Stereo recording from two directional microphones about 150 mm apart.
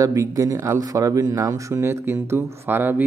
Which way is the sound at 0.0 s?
20° right (ahead or behind).